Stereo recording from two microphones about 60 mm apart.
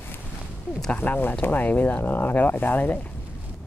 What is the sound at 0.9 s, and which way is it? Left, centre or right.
Speech, left.